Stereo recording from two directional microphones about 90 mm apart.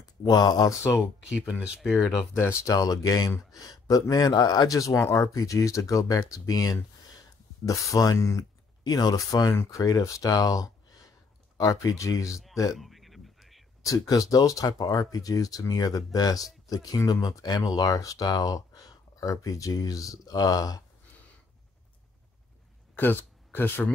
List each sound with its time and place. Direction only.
0.0 s speech: 45° left (ahead or behind)
1.5 s speech: 10° right (ahead or behind)
2.3 s speech: 30° left (ahead or behind)
2.7 s speech: 45° left (ahead or behind)
8.8 s speech: 50° left (ahead or behind)
12.3 s speech: 5° right (ahead or behind)
12.7 s a sound: centre (ahead or behind)
13.8 s speech: 40° left (ahead or behind)
22.9 s speech: 20° left (ahead or behind)